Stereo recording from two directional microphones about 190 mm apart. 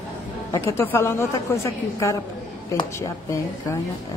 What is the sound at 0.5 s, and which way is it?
A woman's voice, 15° left (ahead or behind).